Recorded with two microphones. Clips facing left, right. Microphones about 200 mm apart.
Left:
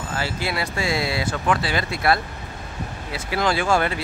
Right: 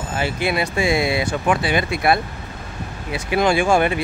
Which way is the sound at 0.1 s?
20° right (ahead or behind).